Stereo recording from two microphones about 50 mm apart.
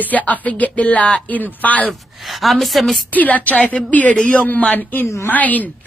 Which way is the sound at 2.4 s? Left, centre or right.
Centre.